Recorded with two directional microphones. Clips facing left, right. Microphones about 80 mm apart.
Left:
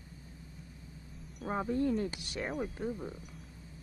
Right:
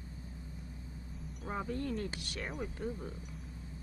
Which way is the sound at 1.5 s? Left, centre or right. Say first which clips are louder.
Left 6 dB; centre.